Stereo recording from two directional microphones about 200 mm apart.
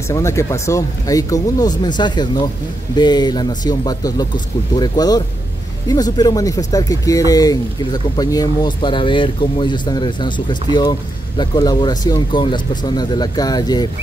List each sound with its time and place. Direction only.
0.1 s speech: 15° left (ahead or behind)